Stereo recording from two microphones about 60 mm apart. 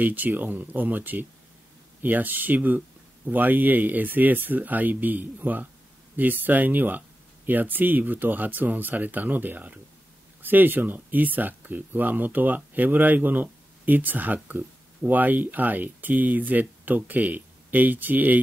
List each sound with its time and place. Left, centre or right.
0.0 s speech: right